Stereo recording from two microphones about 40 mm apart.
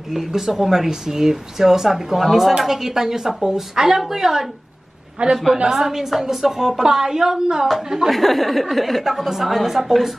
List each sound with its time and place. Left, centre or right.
0.1 s a woman's voice: centre
5.2 s a woman's voice: right
5.7 s speech: centre
8.1 s a woman's voice: centre